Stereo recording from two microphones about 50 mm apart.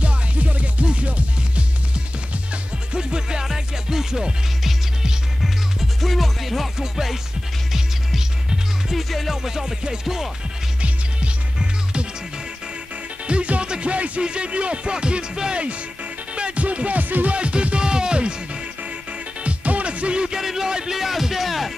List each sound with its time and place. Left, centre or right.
0.0 s music: right; by 7.2 s centre
8.9 s music: centre
13.3 s music: right
19.4 s speech: right; by 21.7 s centre